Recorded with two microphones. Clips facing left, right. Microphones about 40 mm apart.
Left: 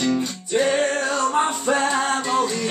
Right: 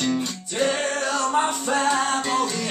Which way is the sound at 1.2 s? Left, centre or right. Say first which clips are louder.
Left 1 dB; left.